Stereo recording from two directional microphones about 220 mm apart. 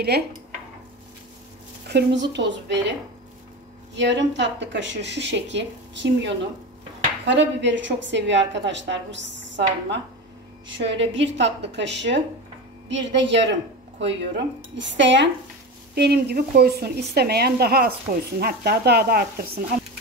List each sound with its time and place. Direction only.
0.1 s speech: 45° right (ahead or behind)
1.9 s speech: 50° right (ahead or behind)
3.9 s a woman's voice: 55° right (ahead or behind)